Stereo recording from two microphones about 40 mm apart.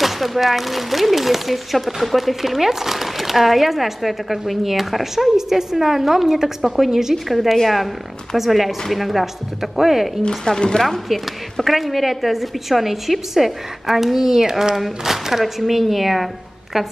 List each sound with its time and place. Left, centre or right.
0.0 s speech: centre
10.2 s speech: centre
11.6 s a woman's voice: centre